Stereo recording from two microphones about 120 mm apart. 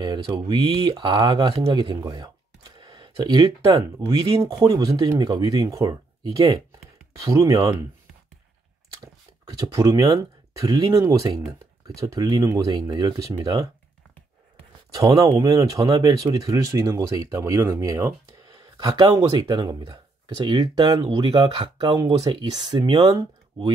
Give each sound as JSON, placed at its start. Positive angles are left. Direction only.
{"t": 0.0, "sound": "speech", "side_deg": -35}
{"t": 2.0, "sound": "a sound", "side_deg": -35}
{"t": 4.5, "sound": "speech", "side_deg": -35}
{"t": 9.0, "sound": "speech", "side_deg": -30}
{"t": 15.0, "sound": "speech", "side_deg": -30}
{"t": 21.7, "sound": "speech", "side_deg": -35}